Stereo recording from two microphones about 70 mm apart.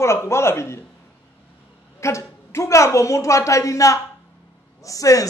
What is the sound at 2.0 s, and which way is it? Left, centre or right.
A man's voice, left.